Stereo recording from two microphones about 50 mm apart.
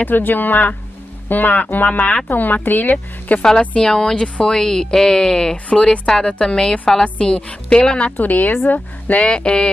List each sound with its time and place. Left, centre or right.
0.0 s speech: left
2.2 s speech: left
3.4 s speech: centre
8.2 s speech: left